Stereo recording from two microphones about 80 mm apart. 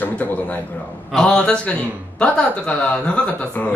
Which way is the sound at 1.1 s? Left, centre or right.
Centre.